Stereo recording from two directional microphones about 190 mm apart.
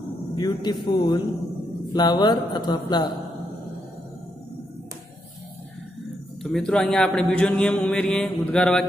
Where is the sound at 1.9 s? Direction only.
25° left (ahead or behind).